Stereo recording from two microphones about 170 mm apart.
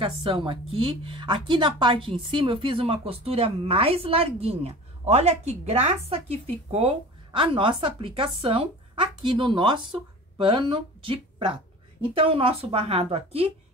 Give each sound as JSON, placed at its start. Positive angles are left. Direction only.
{"t": 0.0, "sound": "a woman's voice", "side_deg": -30}